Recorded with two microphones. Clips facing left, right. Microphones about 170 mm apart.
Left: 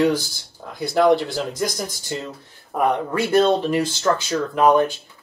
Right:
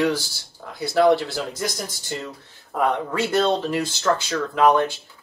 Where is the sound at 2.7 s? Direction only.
15° left (ahead or behind).